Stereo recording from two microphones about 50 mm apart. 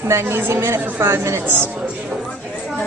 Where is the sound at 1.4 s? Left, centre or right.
Right.